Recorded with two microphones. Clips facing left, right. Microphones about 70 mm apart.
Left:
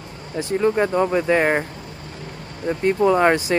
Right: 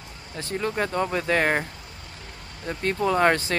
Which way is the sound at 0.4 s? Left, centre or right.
Centre.